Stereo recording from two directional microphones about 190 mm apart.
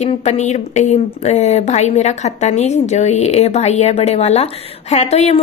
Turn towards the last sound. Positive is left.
turn(degrees=35)  # may be behind; listen again after turning